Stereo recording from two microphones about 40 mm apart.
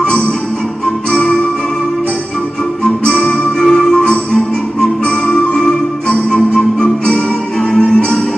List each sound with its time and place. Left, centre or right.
0.0 s music: left
2.8 s music: centre